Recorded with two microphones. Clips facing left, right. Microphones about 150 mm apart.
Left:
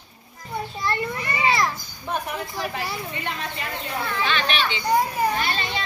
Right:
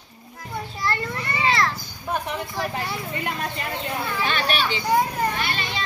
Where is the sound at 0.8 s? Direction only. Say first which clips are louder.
Even; 20° left (ahead or behind).